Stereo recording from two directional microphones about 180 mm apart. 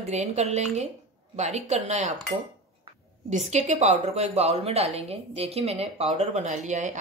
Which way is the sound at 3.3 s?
40° right (ahead or behind).